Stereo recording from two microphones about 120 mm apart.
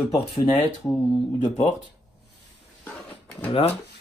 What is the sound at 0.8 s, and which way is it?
Speech, 20° left (ahead or behind).